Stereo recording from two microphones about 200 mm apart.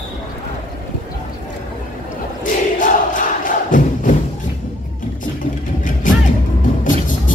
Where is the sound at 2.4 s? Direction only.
40° left (ahead or behind).